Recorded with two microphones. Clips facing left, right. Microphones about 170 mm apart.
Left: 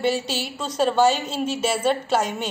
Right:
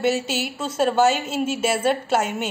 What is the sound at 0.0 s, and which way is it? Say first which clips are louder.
A man's voice: right 1 dB; 5° right (ahead or behind).